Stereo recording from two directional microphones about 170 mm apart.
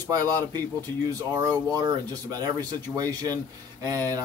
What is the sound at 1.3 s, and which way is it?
Speech, 25° right (ahead or behind).